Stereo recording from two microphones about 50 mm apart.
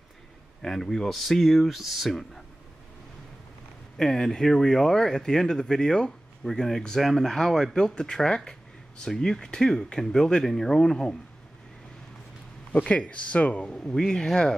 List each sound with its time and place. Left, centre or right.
0.6 s speech: centre
4.0 s speech: centre
12.7 s speech: left
13.7 s speech: centre